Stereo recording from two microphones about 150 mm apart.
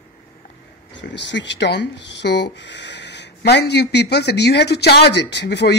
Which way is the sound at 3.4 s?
90° left.